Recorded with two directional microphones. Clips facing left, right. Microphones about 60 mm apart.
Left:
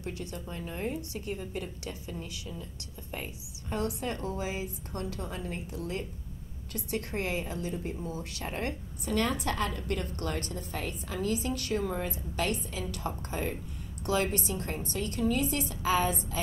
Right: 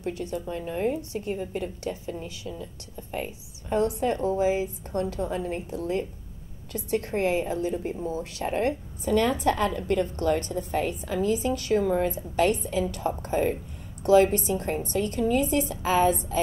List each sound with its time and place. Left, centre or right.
0.2 s a woman's voice: centre
3.1 s a woman's voice: centre
8.2 s a woman's voice: centre